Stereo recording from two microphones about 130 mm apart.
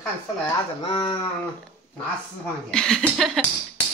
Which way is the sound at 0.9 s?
40° left (ahead or behind).